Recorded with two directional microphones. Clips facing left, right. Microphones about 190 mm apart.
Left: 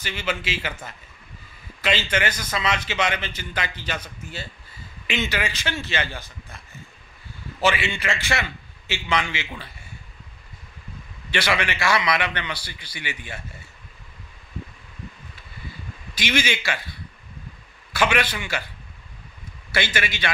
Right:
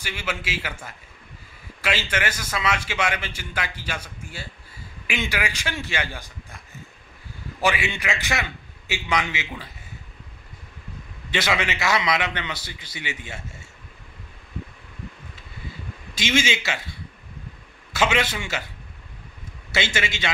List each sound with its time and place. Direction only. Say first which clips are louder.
0.0 s a man's voice: left 2 dB; 10° right (ahead or behind)
7.6 s a man's voice: left 1 dB; 15° right (ahead or behind)
11.3 s a man's voice: even; 20° right (ahead or behind)
16.2 s a man's voice: right 1 dB; 25° right (ahead or behind)
17.9 s a man's voice: even; 20° right (ahead or behind)
19.7 s a man's voice: even; 25° right (ahead or behind)